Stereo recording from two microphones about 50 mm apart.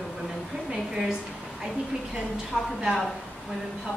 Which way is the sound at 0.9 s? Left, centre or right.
Centre.